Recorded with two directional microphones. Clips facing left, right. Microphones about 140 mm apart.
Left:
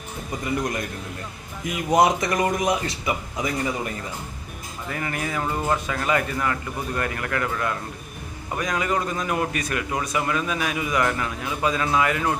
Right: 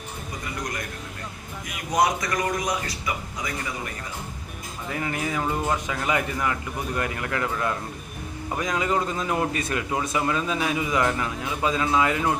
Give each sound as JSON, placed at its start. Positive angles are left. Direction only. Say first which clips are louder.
{"t": 1.9, "sound": "a man's voice", "louder": "left 4 dB", "side_deg": 25}
{"t": 4.9, "sound": "a man's voice", "louder": "even", "side_deg": -20}
{"t": 5.4, "sound": "speech", "louder": "left 2 dB", "side_deg": -5}
{"t": 5.9, "sound": "a man's voice", "louder": "left 2 dB", "side_deg": -15}